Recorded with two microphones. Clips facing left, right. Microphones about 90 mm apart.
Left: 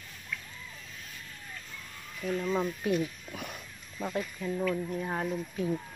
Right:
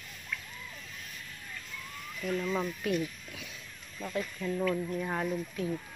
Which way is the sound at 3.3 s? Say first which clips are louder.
Left 6 dB; 55° left (ahead or behind).